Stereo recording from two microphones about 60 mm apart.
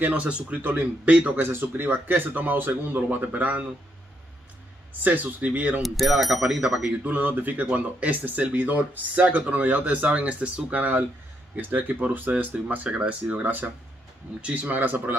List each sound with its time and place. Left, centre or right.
0.0 s speech: right
0.6 s speech: right
1.0 s speech: right
1.4 s speech: right
5.0 s speech: right
5.8 s speech: centre
6.4 s speech: centre
7.1 s speech: right